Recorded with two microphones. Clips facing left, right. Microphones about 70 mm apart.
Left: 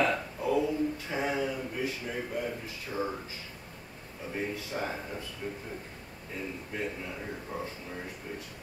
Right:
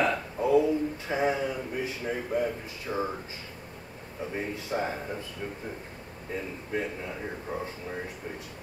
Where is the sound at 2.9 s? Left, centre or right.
Right.